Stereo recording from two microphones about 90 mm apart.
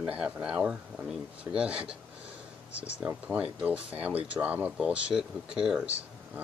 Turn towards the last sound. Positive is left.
turn(degrees=-15)  # may be behind; listen again after turning